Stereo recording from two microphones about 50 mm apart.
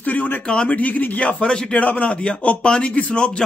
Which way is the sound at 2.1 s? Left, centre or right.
Left.